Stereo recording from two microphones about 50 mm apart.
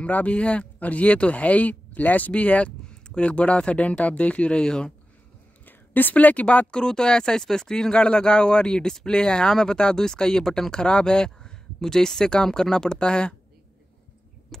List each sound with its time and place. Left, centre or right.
0.0 s speech: left
5.7 s a woman's voice: left
6.7 s speech: centre
14.5 s a sound: centre